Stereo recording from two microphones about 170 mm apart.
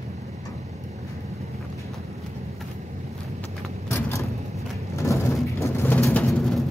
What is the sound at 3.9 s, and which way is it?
Vehicle, 15° left (ahead or behind).